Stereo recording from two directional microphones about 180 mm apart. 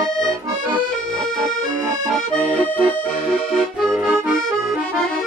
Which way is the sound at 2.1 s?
5° left (ahead or behind).